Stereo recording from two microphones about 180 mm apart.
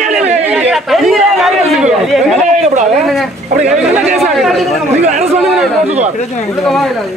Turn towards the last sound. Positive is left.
turn(degrees=-35)  # may be behind; listen again after turning